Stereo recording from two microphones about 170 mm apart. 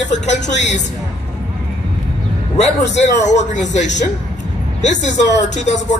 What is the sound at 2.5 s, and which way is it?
Speech, 45° left (ahead or behind).